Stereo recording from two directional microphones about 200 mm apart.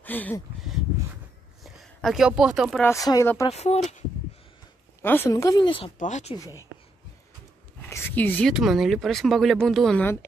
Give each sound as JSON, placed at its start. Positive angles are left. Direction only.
{"t": 0.0, "sound": "speech", "side_deg": 10}
{"t": 1.6, "sound": "speech", "side_deg": 0}
{"t": 2.8, "sound": "speech", "side_deg": 15}
{"t": 3.4, "sound": "speech", "side_deg": 30}
{"t": 5.0, "sound": "speech", "side_deg": 10}
{"t": 5.9, "sound": "speech", "side_deg": 35}
{"t": 7.9, "sound": "speech", "side_deg": 10}